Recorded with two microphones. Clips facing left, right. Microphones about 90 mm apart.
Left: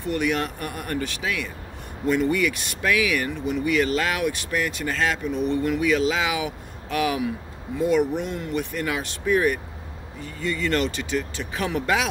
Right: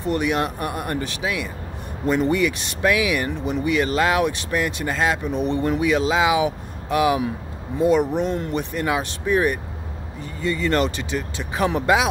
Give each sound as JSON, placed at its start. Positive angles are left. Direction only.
{"t": 0.1, "sound": "speech", "side_deg": -20}